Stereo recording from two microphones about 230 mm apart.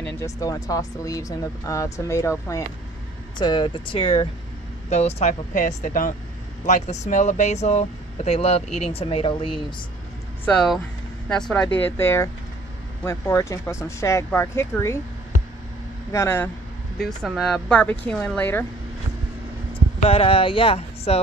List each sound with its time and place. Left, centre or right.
0.0 s speech: centre
10.4 s speech: centre
16.1 s speech: centre
19.7 s speech: left